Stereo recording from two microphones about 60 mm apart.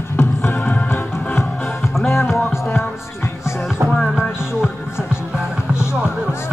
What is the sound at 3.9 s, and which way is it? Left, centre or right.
Music, centre.